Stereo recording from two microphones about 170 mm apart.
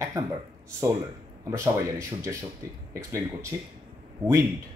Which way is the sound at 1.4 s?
15° right (ahead or behind).